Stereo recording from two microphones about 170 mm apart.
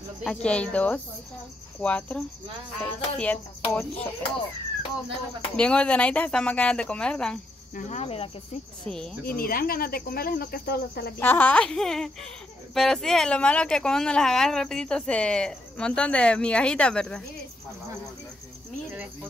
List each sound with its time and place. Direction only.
0.2 s speech: 5° left (ahead or behind)
5.6 s speech: 5° left (ahead or behind)
7.7 s cricket: 45° left (ahead or behind)
8.8 s speech: 5° left (ahead or behind)
9.2 s speech: 60° left (ahead or behind)
11.1 s speech: 10° left (ahead or behind)